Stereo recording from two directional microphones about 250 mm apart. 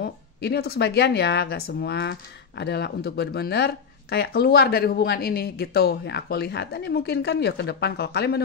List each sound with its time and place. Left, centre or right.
0.0 s speech: left